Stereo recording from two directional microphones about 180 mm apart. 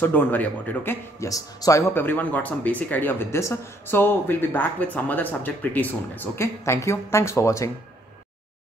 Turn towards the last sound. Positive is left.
turn(degrees=15)  # may be behind; listen again after turning